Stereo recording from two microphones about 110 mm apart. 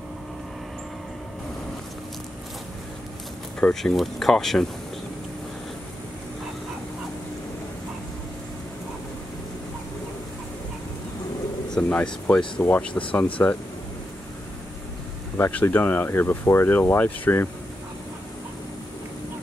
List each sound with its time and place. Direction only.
3.5 s speech: 10° left (ahead or behind)
11.7 s speech: 10° left (ahead or behind)
13.4 s speech: 25° left (ahead or behind)
15.3 s speech: 20° left (ahead or behind)